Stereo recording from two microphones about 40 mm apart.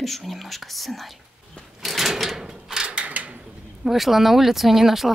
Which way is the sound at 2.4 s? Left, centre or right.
Centre.